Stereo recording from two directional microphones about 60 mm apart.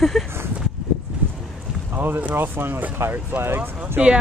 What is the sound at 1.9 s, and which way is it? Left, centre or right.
Speech, right.